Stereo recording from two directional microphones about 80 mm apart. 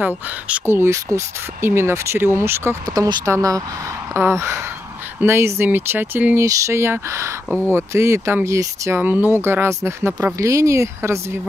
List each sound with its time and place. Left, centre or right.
0.7 s speech: right
2.9 s speech: right
3.3 s speech: right
4.1 s speech: right
9.0 s speech: right